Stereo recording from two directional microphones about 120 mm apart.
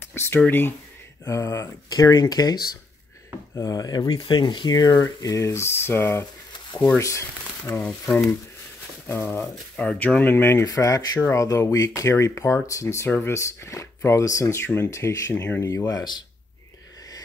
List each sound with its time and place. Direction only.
0.1 s a sound: 20° left (ahead or behind)
0.5 s speech: 15° left (ahead or behind); by 2.5 s 35° left (ahead or behind)
3.5 s speech: 30° left (ahead or behind)